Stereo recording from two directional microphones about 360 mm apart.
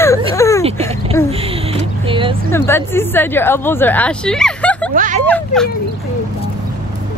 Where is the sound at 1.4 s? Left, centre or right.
Centre.